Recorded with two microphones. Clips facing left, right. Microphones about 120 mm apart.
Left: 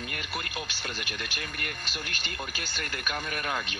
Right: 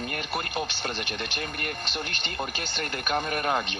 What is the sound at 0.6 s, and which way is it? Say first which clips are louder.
A man's voice: right 6 dB; 30° right (ahead or behind).